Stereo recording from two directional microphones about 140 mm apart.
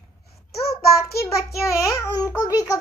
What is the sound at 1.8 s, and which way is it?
Speech, 25° left (ahead or behind).